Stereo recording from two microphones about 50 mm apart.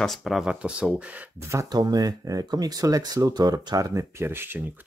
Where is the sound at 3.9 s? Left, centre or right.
Right.